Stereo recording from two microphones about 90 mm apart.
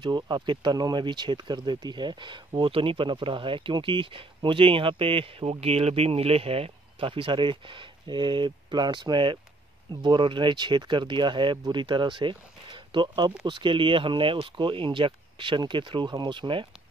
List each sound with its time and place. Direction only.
0.0 s speech: 60° right (ahead or behind)